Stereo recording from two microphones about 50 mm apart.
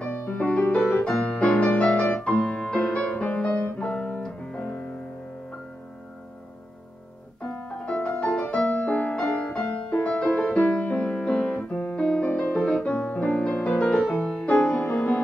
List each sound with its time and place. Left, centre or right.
0.0 s music: left
4.2 s piano: centre
7.4 s music: left
9.1 s music: left
10.5 s piano: left
12.0 s music: centre
12.3 s music: left
14.1 s music: centre
14.4 s music: left